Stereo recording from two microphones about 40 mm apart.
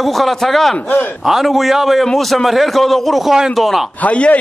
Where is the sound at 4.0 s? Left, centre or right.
Left.